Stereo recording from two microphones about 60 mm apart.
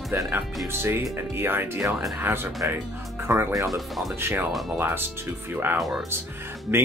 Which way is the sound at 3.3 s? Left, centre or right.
Right.